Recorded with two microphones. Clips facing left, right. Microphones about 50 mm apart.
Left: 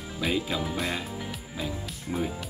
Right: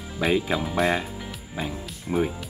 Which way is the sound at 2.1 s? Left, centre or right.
Right.